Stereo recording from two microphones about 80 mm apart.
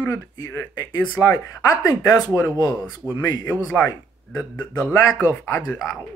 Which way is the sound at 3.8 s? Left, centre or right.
Left.